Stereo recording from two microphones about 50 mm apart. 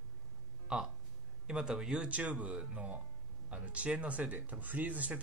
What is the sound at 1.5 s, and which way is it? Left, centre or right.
Speech, centre.